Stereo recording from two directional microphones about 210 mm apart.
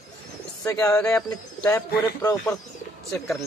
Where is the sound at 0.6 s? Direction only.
15° left (ahead or behind).